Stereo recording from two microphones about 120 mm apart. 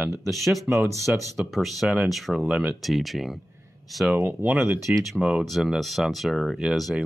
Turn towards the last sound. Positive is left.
turn(degrees=0)  # may be behind; listen again after turning